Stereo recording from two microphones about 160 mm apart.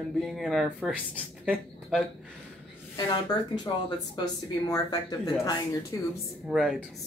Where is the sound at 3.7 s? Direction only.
25° left (ahead or behind).